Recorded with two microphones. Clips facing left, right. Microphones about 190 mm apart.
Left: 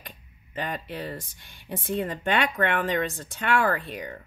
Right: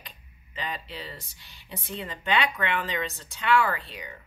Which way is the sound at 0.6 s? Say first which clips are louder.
Left 4 dB; 50° left (ahead or behind).